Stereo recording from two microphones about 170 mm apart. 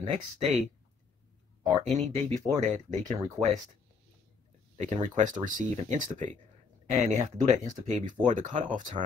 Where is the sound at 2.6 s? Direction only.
45° right (ahead or behind).